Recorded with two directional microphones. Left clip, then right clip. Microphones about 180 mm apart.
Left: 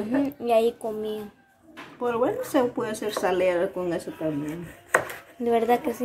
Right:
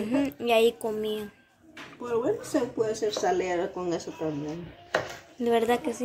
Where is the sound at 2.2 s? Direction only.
20° left (ahead or behind).